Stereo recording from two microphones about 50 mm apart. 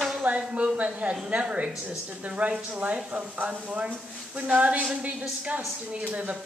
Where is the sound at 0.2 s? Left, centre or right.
Right.